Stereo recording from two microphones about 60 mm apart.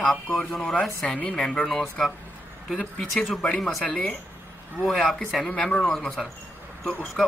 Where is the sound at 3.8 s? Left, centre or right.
Centre.